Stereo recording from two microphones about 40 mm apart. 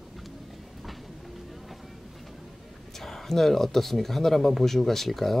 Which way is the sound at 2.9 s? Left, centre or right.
Centre.